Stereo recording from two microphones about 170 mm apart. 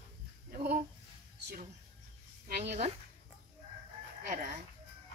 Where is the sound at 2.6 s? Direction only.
40° right (ahead or behind).